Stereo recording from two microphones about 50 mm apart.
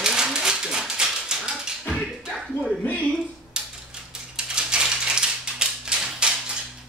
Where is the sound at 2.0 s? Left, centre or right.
Centre.